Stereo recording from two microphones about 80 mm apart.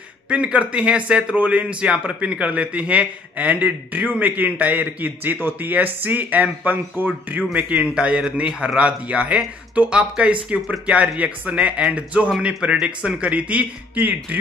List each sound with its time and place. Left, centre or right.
0.3 s a man's voice: centre